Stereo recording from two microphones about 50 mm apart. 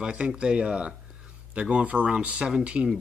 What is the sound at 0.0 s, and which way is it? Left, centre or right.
Speech, centre.